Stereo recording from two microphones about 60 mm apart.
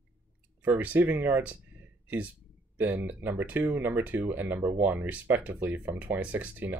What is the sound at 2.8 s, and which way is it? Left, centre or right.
Speech, right.